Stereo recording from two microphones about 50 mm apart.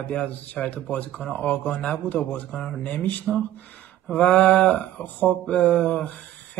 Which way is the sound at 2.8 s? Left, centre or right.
Left.